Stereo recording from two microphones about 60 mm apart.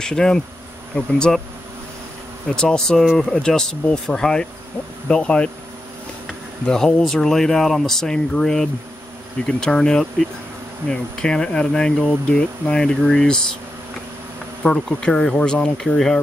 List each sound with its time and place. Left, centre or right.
0.0 s speech: centre
2.5 s speech: centre
6.6 s speech: centre
14.6 s speech: centre